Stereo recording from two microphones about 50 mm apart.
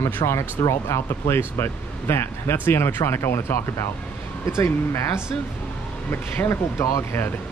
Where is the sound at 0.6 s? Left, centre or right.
Left.